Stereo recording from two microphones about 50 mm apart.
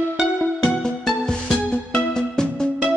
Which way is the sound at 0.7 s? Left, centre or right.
Centre.